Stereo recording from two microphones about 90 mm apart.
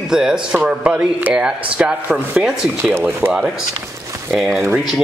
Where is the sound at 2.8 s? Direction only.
25° right (ahead or behind).